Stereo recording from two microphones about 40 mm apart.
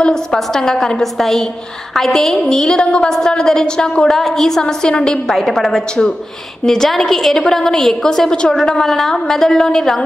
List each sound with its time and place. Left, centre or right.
0.0 s a woman's voice: centre
2.4 s a woman's voice: centre
4.2 s a woman's voice: centre